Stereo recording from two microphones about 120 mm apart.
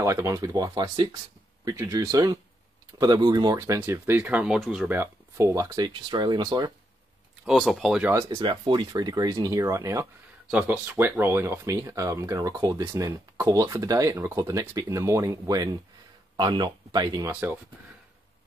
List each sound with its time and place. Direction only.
0.0 s speech: 25° right (ahead or behind); by 4.9 s 5° right (ahead or behind)
4.9 s speech: 20° right (ahead or behind)
6.0 s speech: 40° right (ahead or behind)
7.4 s speech: centre (ahead or behind)
8.1 s speech: 20° right (ahead or behind)
8.4 s speech: 40° right (ahead or behind)
10.5 s speech: 15° right (ahead or behind); by 17.3 s 35° right (ahead or behind)
17.3 s speech: 20° right (ahead or behind)